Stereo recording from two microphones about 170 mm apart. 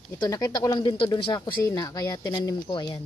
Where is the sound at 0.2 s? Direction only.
25° left (ahead or behind).